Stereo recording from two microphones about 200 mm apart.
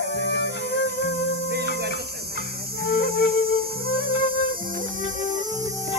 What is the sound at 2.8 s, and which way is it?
Flute, 50° left (ahead or behind).